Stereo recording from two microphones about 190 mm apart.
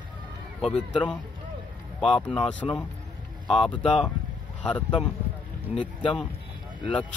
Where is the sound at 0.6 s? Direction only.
5° left (ahead or behind).